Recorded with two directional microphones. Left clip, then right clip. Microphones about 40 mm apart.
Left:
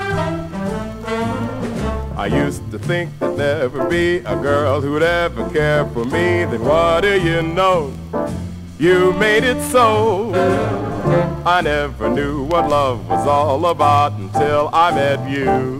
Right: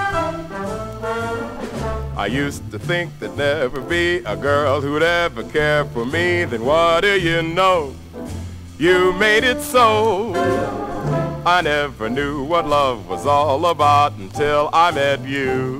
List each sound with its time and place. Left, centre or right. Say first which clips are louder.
2.1 s speech: left 3 dB; left
8.8 s speech: left 1 dB; left
11.4 s speech: right 3 dB; left